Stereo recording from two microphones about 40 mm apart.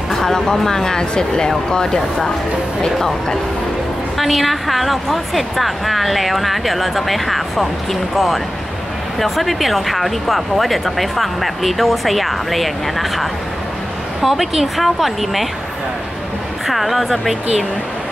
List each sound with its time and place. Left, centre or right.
0.1 s speech: centre
4.2 s a woman's voice: centre
16.6 s a woman's voice: centre